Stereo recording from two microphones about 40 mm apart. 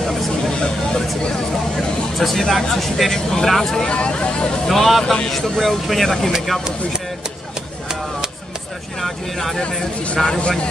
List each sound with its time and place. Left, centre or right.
0.0 s a sound: centre
1.8 s vehicle: centre
2.7 s speech: centre
3.9 s speech: left
4.6 s speech: centre
9.0 s speech: centre
10.1 s speech: left